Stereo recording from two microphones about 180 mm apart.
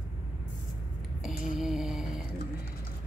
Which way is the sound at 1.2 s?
Centre (ahead or behind).